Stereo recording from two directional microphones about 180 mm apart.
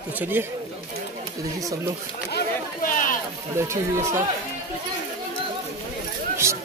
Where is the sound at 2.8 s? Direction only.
50° left (ahead or behind).